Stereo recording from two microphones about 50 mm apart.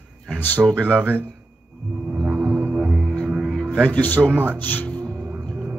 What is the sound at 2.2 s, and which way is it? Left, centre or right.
Music, right.